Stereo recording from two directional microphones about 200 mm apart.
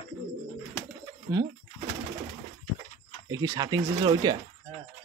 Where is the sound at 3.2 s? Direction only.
20° right (ahead or behind).